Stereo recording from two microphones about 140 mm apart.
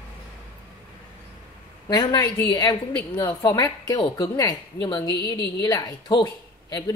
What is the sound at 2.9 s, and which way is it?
Speech, 10° left (ahead or behind).